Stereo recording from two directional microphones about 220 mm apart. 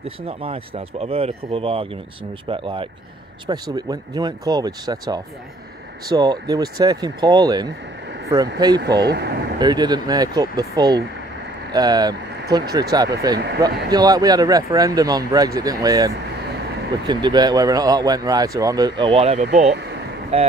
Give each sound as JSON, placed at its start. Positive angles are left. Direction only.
{"t": 0.0, "sound": "speech", "side_deg": -25}
{"t": 9.0, "sound": "speech", "side_deg": -50}
{"t": 9.6, "sound": "speech", "side_deg": -20}
{"t": 17.1, "sound": "speech", "side_deg": -20}
{"t": 19.4, "sound": "speech", "side_deg": -40}